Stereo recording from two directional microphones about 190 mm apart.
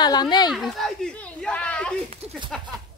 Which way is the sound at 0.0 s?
20° left (ahead or behind).